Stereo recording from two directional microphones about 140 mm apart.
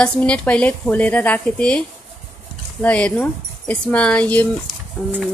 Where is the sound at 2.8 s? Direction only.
10° left (ahead or behind).